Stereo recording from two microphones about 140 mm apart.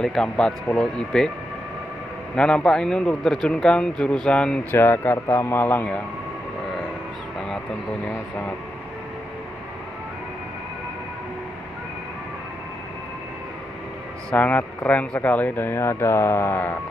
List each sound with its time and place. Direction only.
0.0 s speech: 5° left (ahead or behind)
2.3 s a man's voice: 5° left (ahead or behind)
14.3 s a man's voice: 15° left (ahead or behind)